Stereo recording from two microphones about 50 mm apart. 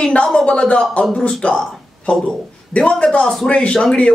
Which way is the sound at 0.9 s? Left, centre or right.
Left.